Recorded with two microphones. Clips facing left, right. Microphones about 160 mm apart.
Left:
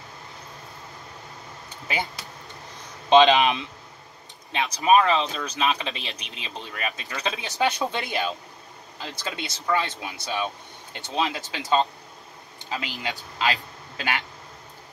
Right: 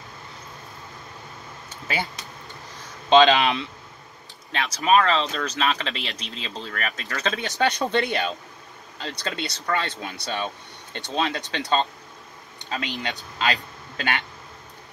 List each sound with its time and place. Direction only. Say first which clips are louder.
3.1 s speech: even; 15° left (ahead or behind)